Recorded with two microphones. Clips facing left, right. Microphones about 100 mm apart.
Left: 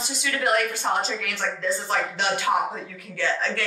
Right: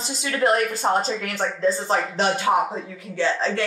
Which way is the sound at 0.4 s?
35° right (ahead or behind).